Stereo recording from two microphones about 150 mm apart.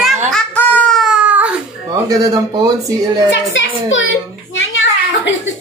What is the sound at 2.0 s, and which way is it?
Speech, 25° right (ahead or behind).